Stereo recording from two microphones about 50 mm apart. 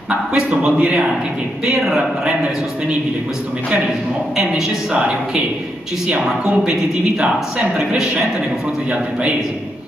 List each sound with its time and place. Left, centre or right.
0.6 s a man's voice: right
1.7 s a man's voice: centre
2.0 s a man's voice: centre
4.4 s a man's voice: centre
6.4 s a man's voice: right
7.7 s a man's voice: centre